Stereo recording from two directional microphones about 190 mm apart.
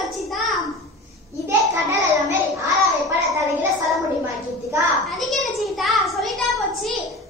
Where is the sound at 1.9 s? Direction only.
15° right (ahead or behind).